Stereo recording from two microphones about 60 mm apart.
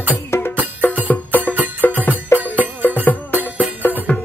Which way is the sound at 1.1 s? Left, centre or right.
Left.